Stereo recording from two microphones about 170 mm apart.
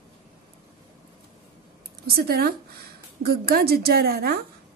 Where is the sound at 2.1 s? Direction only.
65° right (ahead or behind).